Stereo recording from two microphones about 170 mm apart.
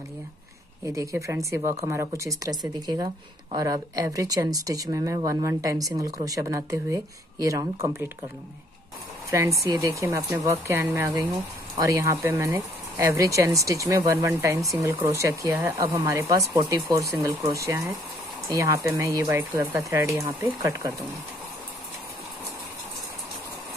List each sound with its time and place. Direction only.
0.8 s speech: 20° right (ahead or behind)
9.3 s speech: 20° right (ahead or behind)